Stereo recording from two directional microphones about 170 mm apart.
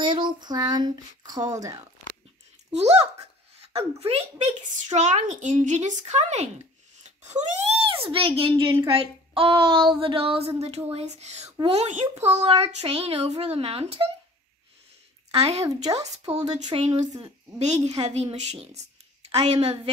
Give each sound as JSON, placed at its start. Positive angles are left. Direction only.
{"t": 0.0, "sound": "speech", "side_deg": -30}
{"t": 2.7, "sound": "a child's voice", "side_deg": -40}
{"t": 15.6, "sound": "speech", "side_deg": -20}
{"t": 16.3, "sound": "a child's voice", "side_deg": -40}